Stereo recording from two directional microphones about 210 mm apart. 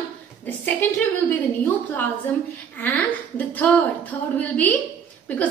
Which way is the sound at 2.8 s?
10° left (ahead or behind).